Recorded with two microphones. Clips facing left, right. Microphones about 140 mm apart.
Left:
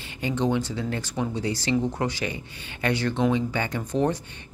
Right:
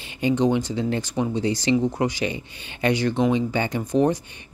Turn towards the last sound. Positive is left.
turn(degrees=-15)  # may be behind; listen again after turning